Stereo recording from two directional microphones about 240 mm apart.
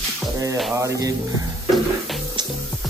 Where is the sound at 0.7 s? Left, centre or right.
Centre.